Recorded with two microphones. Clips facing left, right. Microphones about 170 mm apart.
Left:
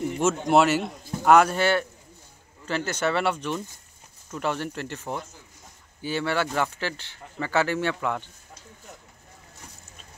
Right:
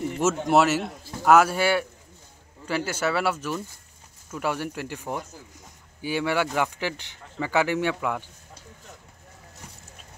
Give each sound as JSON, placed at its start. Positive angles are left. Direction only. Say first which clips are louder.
{"t": 0.2, "sound": "a man's voice", "louder": "even", "side_deg": -5}